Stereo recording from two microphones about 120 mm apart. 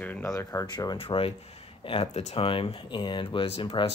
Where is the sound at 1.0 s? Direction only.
50° left (ahead or behind).